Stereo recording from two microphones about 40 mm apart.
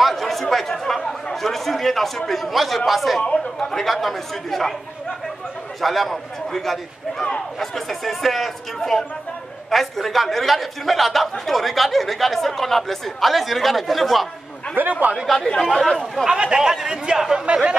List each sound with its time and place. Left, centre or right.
0.0 s chatter: centre
3.7 s a man's voice: centre
5.8 s a man's voice: centre
14.8 s speech: right
15.3 s speech: centre
16.3 s speech: centre